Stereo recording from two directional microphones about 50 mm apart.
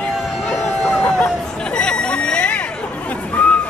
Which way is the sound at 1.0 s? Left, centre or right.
Left.